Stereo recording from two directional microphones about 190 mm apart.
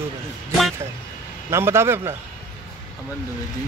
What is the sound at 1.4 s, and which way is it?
Speech, 15° right (ahead or behind).